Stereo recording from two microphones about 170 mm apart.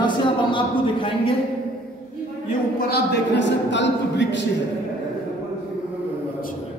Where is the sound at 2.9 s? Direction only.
85° left.